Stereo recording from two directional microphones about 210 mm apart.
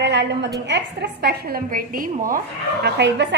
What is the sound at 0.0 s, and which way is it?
A woman's voice, 55° right (ahead or behind).